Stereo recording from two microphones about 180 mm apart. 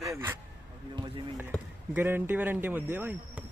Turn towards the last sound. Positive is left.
turn(degrees=-10)  # may be behind; listen again after turning